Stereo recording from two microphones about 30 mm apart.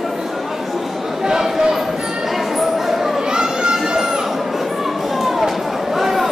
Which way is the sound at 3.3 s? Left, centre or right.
Right.